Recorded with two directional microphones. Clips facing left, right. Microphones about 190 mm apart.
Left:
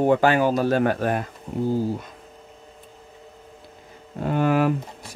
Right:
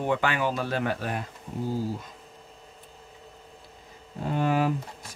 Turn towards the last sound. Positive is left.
turn(degrees=65)  # may be behind; listen again after turning